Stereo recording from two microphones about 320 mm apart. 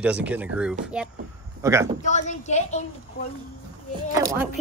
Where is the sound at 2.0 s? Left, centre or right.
Left.